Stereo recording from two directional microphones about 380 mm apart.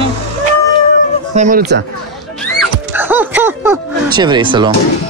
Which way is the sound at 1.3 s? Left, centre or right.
Right.